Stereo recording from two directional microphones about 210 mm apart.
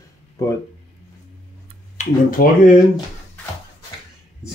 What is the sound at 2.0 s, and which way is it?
Speech, 40° left (ahead or behind).